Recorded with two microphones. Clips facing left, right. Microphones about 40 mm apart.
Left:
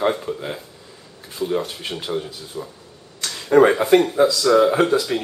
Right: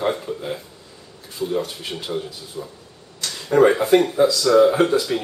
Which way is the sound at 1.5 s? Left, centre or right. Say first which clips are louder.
Left 1 dB; centre.